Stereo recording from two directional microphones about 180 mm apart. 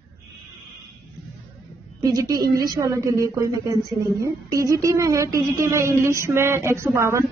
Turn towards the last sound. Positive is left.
turn(degrees=-15)  # may be behind; listen again after turning